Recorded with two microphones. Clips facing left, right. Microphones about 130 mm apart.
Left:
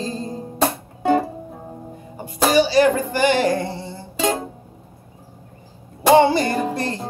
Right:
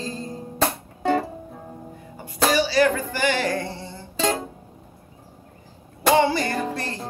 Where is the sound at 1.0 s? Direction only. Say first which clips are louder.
Left 4 dB; 10° left (ahead or behind).